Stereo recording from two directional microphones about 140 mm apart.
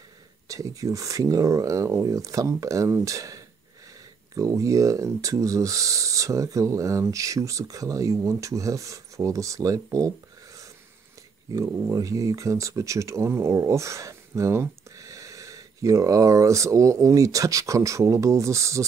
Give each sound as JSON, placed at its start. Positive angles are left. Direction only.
{"t": 0.5, "sound": "speech", "side_deg": -25}